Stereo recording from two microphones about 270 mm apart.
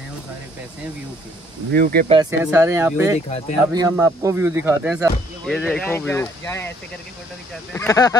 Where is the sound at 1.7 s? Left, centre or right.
Right.